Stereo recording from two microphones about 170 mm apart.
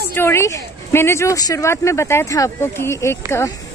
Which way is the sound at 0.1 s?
15° left (ahead or behind).